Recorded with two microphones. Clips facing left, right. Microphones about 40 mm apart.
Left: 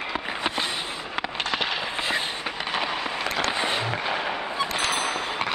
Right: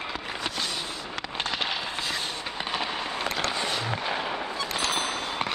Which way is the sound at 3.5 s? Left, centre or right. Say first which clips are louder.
Left 3 dB; left.